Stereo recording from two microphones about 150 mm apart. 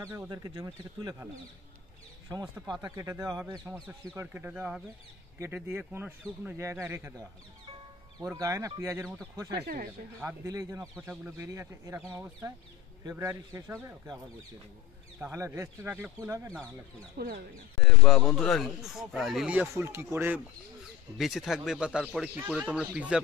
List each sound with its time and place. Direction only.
0.0 s speech: 25° right (ahead or behind)
2.2 s speech: 25° right (ahead or behind)
4.1 s speech: 15° right (ahead or behind)
9.6 s speech: 80° right
10.2 s speech: 20° right (ahead or behind)
11.0 s speech: 5° right (ahead or behind)
11.3 s speech: 20° right (ahead or behind)
15.1 s speech: 15° right (ahead or behind)
17.2 s speech: 90° right
17.7 s speech: centre (ahead or behind)
19.7 s speech: 15° right (ahead or behind)
21.2 s speech: centre (ahead or behind)